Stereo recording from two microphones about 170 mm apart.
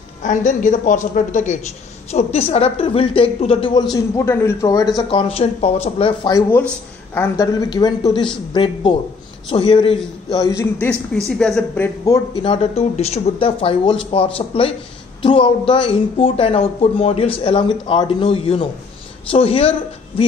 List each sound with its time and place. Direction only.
0.2 s a woman's voice: 45° left (ahead or behind)
3.9 s speech: 15° left (ahead or behind)
4.9 s speech: 30° left (ahead or behind)
7.2 s a man's voice: 20° left (ahead or behind)
10.6 s speech: 10° left (ahead or behind)
12.1 s speech: 30° left (ahead or behind)